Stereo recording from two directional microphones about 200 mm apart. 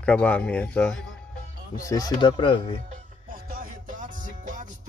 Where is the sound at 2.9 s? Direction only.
45° right (ahead or behind).